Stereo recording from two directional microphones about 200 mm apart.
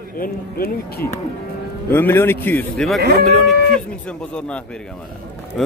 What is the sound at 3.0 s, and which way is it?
Speech, 50° right (ahead or behind).